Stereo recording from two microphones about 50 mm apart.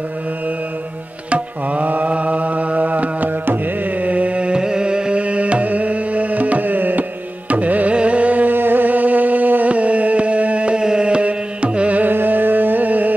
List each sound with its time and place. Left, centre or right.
1.3 s music: right
8.5 s music: right